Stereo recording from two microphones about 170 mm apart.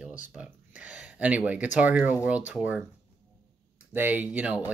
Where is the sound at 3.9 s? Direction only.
10° right (ahead or behind).